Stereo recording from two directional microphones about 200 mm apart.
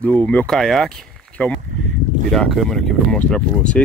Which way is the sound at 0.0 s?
5° left (ahead or behind).